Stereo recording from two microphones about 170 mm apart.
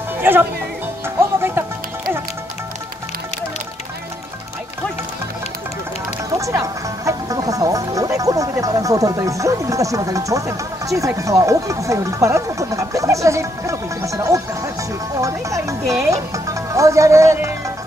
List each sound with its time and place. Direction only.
0.2 s speech: 10° right (ahead or behind)
1.0 s music: 15° right (ahead or behind)
6.3 s speech: 20° right (ahead or behind)